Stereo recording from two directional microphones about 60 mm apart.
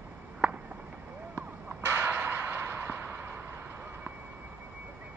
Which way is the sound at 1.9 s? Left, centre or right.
Right.